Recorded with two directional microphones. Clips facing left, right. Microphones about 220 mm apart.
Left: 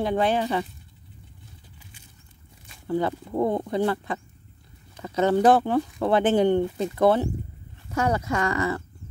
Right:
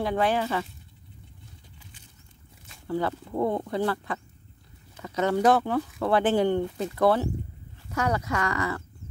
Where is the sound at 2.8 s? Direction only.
20° left (ahead or behind).